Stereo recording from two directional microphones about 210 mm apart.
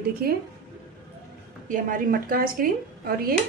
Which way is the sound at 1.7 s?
40° right (ahead or behind).